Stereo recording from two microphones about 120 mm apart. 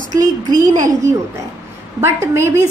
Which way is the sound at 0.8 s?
30° right (ahead or behind).